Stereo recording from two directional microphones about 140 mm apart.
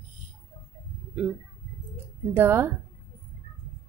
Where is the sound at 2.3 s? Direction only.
15° right (ahead or behind).